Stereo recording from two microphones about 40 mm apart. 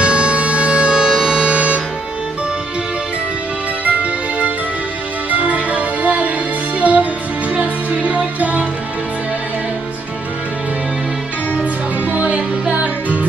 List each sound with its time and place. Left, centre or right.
0.0 s music: right
3.8 s music: right
12.1 s music: right